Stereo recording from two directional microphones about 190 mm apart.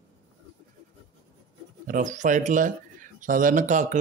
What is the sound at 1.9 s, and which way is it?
Speech, 40° right (ahead or behind).